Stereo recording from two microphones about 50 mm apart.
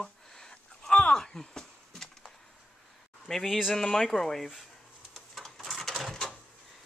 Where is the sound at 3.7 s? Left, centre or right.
Centre.